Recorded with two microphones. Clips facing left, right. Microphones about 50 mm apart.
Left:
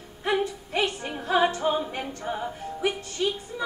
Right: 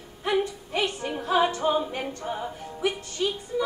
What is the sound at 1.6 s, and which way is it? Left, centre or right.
A capella, centre.